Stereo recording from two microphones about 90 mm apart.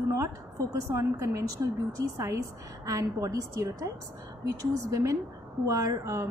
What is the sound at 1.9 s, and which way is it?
A woman's voice, 35° right (ahead or behind).